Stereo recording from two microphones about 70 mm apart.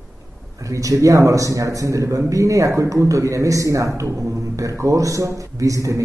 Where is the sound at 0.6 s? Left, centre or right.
Right.